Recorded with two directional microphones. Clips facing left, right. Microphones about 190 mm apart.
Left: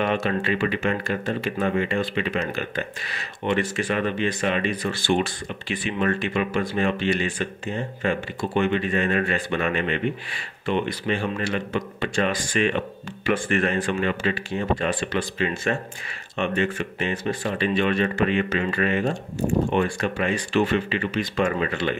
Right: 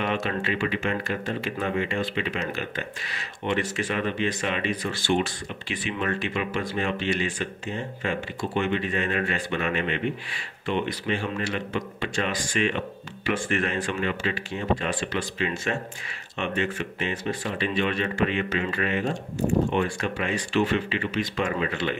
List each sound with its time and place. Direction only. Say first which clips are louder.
0.0 s speech: left 4 dB; 50° left (ahead or behind)
8.5 s speech: left 4 dB; 50° left (ahead or behind)